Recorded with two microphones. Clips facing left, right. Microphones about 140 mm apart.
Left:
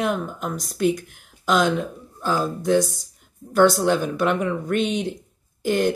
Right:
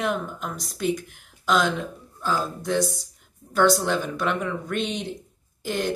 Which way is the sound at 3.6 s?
10° left (ahead or behind).